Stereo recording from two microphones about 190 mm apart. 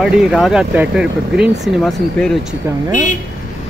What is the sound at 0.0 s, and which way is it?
Speech, centre (ahead or behind).